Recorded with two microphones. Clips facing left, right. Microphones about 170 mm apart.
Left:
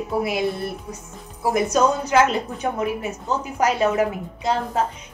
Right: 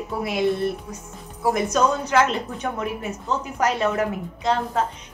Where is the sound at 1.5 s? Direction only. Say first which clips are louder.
Left 2 dB; 5° left (ahead or behind).